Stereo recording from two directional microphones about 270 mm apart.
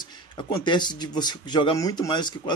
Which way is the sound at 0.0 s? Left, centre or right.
Centre.